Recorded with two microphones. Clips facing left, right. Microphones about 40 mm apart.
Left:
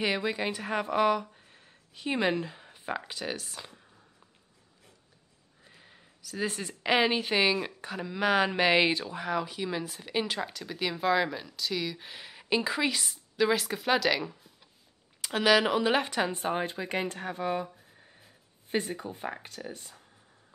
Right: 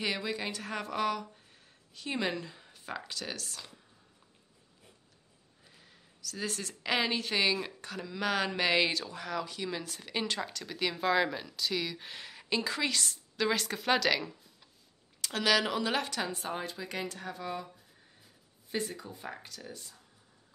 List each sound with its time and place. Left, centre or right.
0.0 s speech: left
5.7 s speech: left
18.7 s speech: left